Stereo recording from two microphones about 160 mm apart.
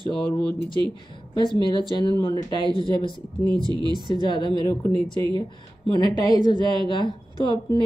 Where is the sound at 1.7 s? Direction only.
30° left (ahead or behind).